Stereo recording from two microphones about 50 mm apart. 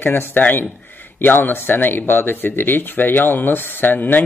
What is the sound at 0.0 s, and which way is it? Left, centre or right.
Speech, left.